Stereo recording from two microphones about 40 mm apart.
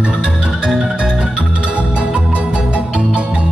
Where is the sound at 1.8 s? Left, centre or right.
Right.